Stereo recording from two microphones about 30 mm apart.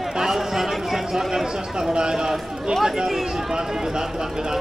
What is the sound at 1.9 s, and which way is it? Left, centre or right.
Speech, right.